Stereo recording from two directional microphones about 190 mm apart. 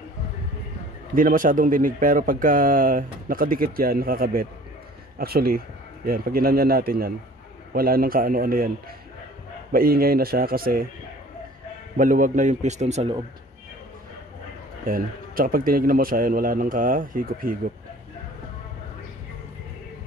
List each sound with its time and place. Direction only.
1.1 s speech: 45° right (ahead or behind)
9.7 s speech: 50° right (ahead or behind)
12.0 s speech: 45° right (ahead or behind)
14.9 s speech: 50° right (ahead or behind)